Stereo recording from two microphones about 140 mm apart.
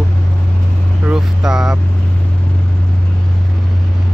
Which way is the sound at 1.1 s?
5° right (ahead or behind).